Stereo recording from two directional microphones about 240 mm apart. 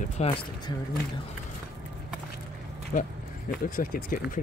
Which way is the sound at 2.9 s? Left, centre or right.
Left.